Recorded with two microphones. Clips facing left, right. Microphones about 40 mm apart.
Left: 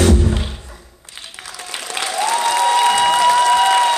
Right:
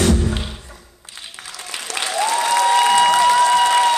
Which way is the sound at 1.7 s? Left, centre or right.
Left.